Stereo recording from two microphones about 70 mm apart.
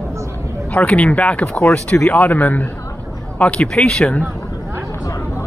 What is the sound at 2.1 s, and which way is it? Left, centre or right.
Speech, left.